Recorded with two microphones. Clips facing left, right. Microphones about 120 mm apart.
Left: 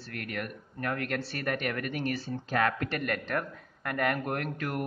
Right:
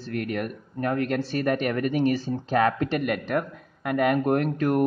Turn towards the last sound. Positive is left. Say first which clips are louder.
# right 11 dB
turn(degrees=-30)  # may be behind; listen again after turning